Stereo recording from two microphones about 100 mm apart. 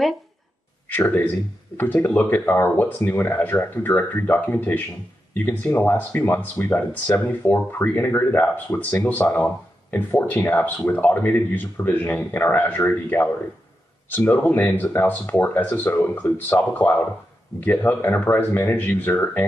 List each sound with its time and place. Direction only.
0.8 s speech: 20° left (ahead or behind)